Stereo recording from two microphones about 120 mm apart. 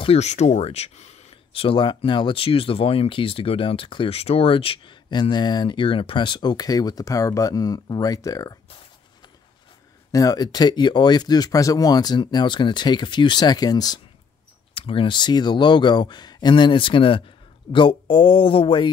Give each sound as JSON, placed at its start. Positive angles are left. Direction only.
{"t": 0.0, "sound": "speech", "side_deg": 65}
{"t": 10.1, "sound": "speech", "side_deg": 30}
{"t": 14.7, "sound": "speech", "side_deg": 50}